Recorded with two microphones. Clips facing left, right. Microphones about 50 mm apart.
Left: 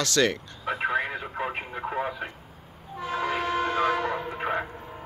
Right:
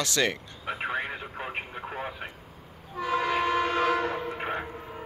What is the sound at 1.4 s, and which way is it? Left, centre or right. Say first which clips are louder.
Radio: left 5 dB; centre.